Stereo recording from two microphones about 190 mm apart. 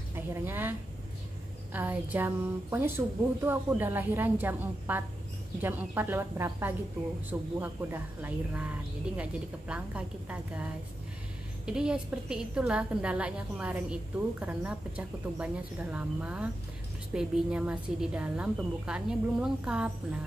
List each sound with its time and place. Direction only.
0.1 s a woman's voice: 10° right (ahead or behind)